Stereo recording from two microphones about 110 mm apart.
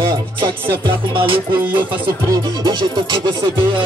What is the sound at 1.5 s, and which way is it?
Music, 15° right (ahead or behind).